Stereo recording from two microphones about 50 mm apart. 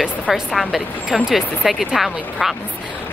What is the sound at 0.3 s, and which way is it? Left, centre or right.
Speech, centre.